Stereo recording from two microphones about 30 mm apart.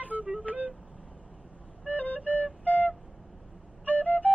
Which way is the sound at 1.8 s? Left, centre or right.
Left.